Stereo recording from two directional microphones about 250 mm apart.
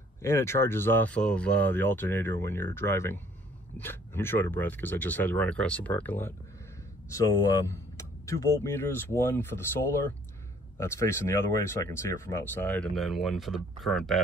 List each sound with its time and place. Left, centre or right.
0.2 s speech: centre
7.5 s speech: centre